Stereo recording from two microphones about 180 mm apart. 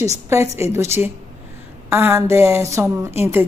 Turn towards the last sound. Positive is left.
turn(degrees=-10)  # may be behind; listen again after turning